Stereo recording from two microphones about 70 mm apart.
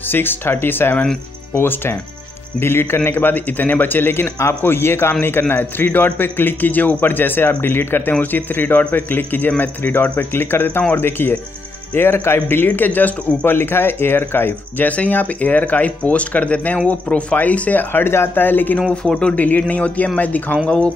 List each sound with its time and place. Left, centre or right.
0.1 s speech: left
18.9 s speech: centre